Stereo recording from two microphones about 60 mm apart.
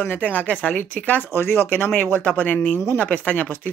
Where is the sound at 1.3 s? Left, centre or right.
Left.